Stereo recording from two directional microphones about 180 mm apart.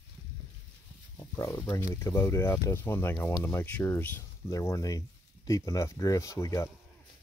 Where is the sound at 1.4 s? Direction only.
15° left (ahead or behind).